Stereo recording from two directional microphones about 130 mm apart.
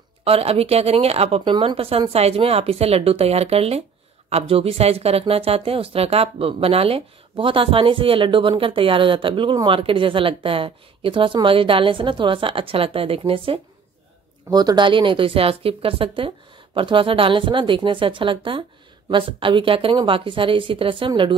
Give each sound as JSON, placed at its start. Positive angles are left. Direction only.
{"t": 0.2, "sound": "speech", "side_deg": -50}
{"t": 14.5, "sound": "a woman's voice", "side_deg": -30}